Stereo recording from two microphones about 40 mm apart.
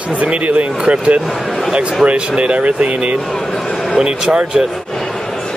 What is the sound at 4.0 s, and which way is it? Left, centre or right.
Speech, right.